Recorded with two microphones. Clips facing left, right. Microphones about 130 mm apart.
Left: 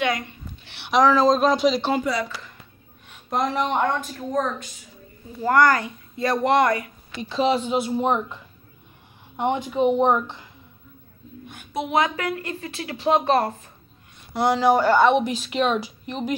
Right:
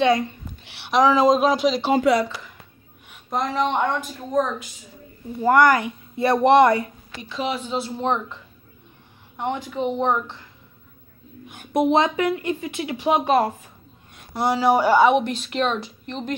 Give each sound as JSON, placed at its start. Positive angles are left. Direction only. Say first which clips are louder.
{"t": 0.7, "sound": "a sound", "louder": "even", "side_deg": 0}
{"t": 1.0, "sound": "a woman's voice", "louder": "right 1 dB", "side_deg": -10}
{"t": 2.1, "sound": "speech", "louder": "right 7 dB", "side_deg": -75}
{"t": 3.3, "sound": "a woman's voice", "louder": "even", "side_deg": 0}
{"t": 5.4, "sound": "a woman's voice", "louder": "right 2 dB", "side_deg": -15}
{"t": 7.2, "sound": "speech", "louder": "left 6 dB", "side_deg": 30}
{"t": 7.6, "sound": "speech", "louder": "left 3 dB", "side_deg": 15}
{"t": 9.4, "sound": "speech", "louder": "left 4 dB", "side_deg": 20}
{"t": 11.9, "sound": "a woman's voice", "louder": "even", "side_deg": -25}